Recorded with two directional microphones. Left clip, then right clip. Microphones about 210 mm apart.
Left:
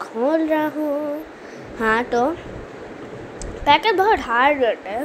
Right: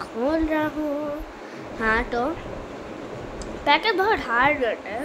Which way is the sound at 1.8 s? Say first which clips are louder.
Left 4 dB; 15° left (ahead or behind).